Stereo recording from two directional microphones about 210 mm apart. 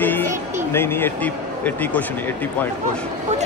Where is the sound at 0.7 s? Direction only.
10° left (ahead or behind).